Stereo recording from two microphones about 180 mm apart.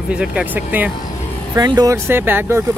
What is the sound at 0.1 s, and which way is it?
Speech, 5° right (ahead or behind).